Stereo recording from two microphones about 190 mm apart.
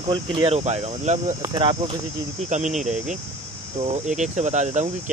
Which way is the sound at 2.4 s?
40° right (ahead or behind).